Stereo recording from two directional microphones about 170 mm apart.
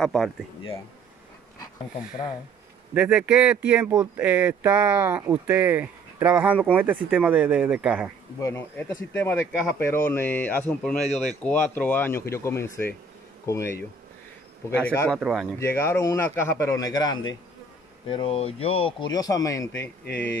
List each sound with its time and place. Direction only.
0.0 s speech: centre (ahead or behind)
2.9 s speech: 5° right (ahead or behind)
8.4 s speech: 15° left (ahead or behind)
15.1 s speech: centre (ahead or behind)
15.6 s speech: 15° left (ahead or behind)